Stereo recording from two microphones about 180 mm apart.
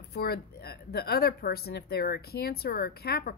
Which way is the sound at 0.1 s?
60° left (ahead or behind).